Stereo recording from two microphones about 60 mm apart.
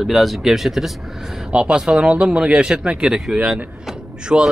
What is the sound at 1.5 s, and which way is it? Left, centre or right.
Speech, centre.